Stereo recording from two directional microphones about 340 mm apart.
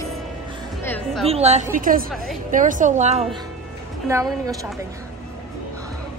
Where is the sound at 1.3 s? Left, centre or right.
Centre.